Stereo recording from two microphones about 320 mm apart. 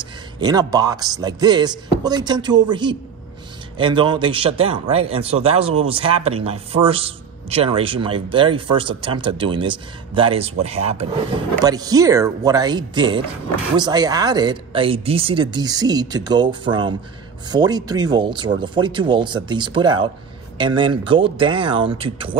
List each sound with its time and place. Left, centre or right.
0.0 s speech: centre